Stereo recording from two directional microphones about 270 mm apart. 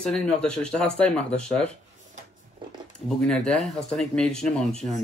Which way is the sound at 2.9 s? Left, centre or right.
Centre.